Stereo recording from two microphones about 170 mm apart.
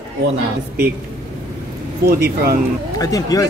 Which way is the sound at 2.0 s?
60° right (ahead or behind).